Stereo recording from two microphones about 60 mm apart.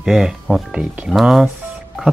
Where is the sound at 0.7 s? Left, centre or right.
Centre.